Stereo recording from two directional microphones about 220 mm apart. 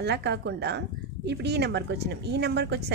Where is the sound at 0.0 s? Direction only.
50° right (ahead or behind).